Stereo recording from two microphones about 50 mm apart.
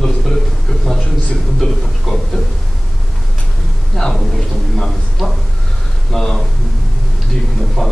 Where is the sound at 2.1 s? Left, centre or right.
Centre.